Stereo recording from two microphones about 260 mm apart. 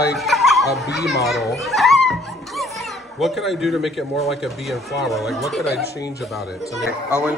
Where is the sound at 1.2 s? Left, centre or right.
Centre.